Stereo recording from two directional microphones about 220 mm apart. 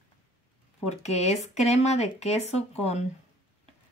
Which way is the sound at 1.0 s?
30° left (ahead or behind).